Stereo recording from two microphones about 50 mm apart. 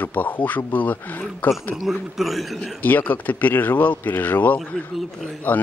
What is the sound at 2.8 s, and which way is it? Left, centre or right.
Speech, left.